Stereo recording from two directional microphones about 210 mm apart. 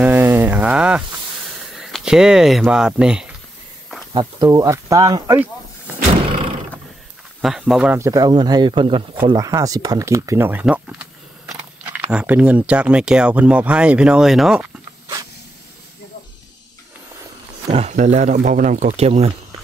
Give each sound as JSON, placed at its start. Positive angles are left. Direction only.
{"t": 0.0, "sound": "a sound", "side_deg": -10}
{"t": 1.7, "sound": "speech", "side_deg": 0}
{"t": 4.1, "sound": "speech", "side_deg": -20}
{"t": 7.4, "sound": "speech", "side_deg": 0}
{"t": 17.6, "sound": "speech", "side_deg": -30}